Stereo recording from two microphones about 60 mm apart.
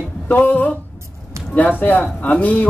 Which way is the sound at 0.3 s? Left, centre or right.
Left.